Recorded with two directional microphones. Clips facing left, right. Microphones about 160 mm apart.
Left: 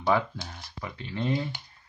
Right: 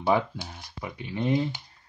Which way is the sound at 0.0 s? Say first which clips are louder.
Right 1 dB; 10° right (ahead or behind).